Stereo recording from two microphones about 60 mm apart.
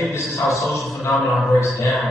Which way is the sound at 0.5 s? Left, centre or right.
Centre.